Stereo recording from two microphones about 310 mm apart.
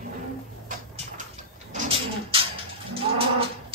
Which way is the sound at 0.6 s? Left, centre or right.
Right.